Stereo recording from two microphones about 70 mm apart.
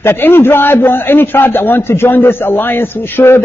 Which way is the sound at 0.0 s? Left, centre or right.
Left.